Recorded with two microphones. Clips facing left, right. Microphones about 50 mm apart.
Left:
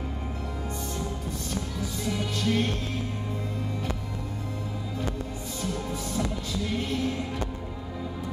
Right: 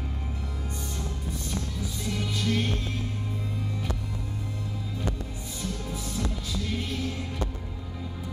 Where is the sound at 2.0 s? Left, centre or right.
Centre.